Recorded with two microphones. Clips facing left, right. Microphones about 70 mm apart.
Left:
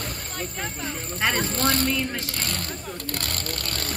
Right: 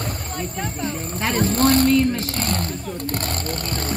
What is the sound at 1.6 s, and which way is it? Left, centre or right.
Vehicle, right.